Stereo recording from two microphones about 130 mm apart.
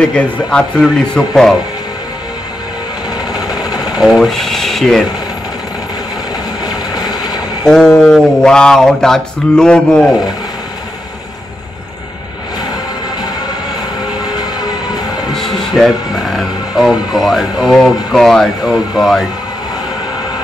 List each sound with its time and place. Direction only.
0.0 s speech: 5° left (ahead or behind)
3.3 s vehicle: 5° right (ahead or behind)
3.8 s speech: 5° right (ahead or behind)
6.6 s vehicle: 30° left (ahead or behind)
7.6 s speech: 5° left (ahead or behind)
15.3 s speech: centre (ahead or behind)